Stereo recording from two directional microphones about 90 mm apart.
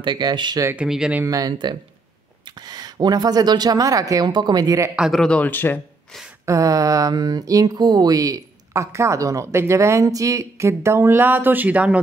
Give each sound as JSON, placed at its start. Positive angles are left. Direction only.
{"t": 0.0, "sound": "speech", "side_deg": -60}
{"t": 0.7, "sound": "speech", "side_deg": -5}
{"t": 1.2, "sound": "speech", "side_deg": -40}
{"t": 4.3, "sound": "speech", "side_deg": -55}
{"t": 5.1, "sound": "speech", "side_deg": 5}
{"t": 5.4, "sound": "speech", "side_deg": 20}
{"t": 6.4, "sound": "a sound", "side_deg": -35}